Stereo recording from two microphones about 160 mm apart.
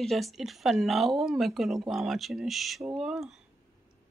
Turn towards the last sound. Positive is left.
turn(degrees=-5)  # may be behind; listen again after turning